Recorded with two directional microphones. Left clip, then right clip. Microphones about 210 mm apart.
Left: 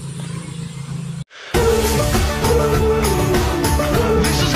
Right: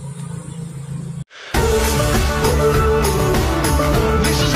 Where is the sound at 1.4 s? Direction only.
Centre (ahead or behind).